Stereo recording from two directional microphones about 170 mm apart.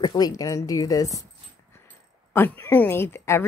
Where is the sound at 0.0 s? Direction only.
25° left (ahead or behind).